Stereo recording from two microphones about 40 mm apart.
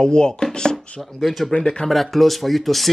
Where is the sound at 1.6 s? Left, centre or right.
Left.